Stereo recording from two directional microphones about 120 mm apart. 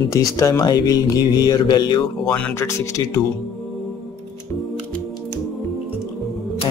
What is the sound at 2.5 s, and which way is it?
Speech, 25° left (ahead or behind).